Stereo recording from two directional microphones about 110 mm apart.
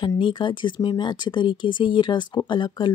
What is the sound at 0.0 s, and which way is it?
Speech, 45° left (ahead or behind).